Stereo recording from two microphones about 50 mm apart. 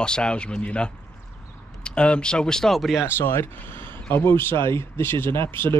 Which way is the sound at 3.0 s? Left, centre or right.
Left.